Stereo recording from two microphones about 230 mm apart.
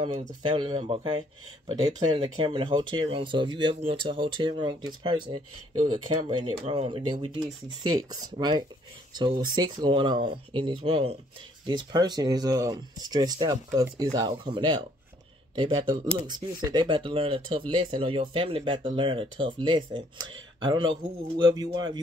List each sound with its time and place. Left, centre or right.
0.5 s speech: right